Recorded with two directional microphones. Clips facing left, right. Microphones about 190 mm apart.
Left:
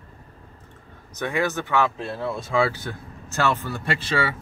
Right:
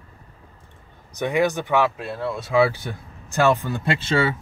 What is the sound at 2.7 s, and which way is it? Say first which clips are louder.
Speech: right 1 dB; 15° right (ahead or behind).